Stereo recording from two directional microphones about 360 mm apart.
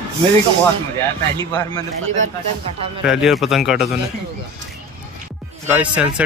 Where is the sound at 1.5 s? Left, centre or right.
Centre.